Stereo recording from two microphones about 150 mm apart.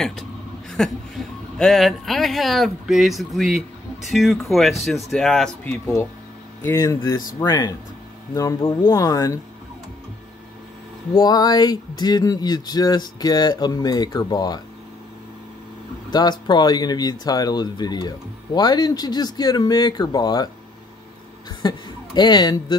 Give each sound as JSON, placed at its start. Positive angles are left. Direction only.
{"t": 0.0, "sound": "a man's voice", "side_deg": 5}
{"t": 6.6, "sound": "speech", "side_deg": 20}
{"t": 11.1, "sound": "speech", "side_deg": 25}
{"t": 16.1, "sound": "speech", "side_deg": 30}
{"t": 21.5, "sound": "speech", "side_deg": 30}